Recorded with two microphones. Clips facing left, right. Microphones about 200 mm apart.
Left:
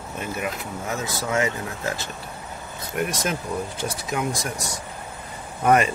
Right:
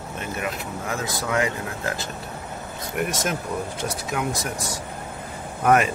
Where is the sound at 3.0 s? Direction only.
Centre (ahead or behind).